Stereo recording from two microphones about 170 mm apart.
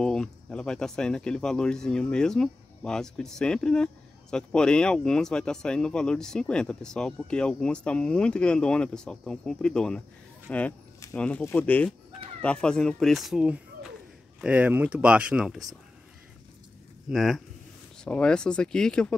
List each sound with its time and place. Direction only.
0.0 s speech: 5° left (ahead or behind)
10.5 s fowl: 10° left (ahead or behind)
12.4 s speech: 5° left (ahead or behind)
17.1 s speech: centre (ahead or behind)